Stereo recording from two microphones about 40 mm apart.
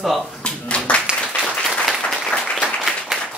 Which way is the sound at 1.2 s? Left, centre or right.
Left.